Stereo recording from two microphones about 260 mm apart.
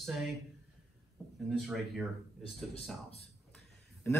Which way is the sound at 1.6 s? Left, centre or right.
Centre.